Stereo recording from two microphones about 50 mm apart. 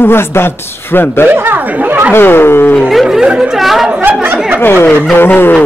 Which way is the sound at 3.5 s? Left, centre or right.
Centre.